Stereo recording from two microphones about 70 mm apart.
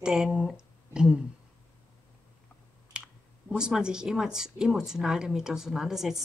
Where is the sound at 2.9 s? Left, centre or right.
Centre.